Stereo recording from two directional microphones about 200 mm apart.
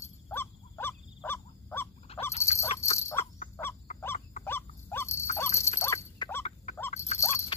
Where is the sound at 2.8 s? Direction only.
15° left (ahead or behind).